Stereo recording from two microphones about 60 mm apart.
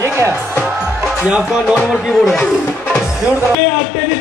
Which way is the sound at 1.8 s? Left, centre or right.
Centre.